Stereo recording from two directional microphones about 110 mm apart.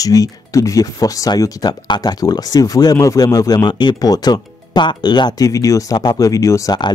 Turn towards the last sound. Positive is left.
turn(degrees=30)  # may be behind; listen again after turning